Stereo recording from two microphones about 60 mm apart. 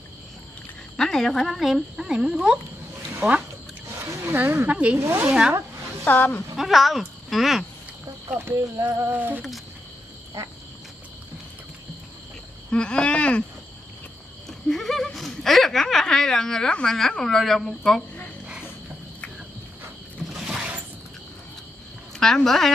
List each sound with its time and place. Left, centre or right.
0.9 s speech: centre
3.9 s a sound: right
4.2 s speech: right
4.9 s speech: right
6.0 s speech: left
6.5 s speech: centre
8.7 s a sound: right
9.1 s speech: right
12.7 s speech: centre
14.7 s speech: centre
20.2 s a sound: centre
22.2 s speech: centre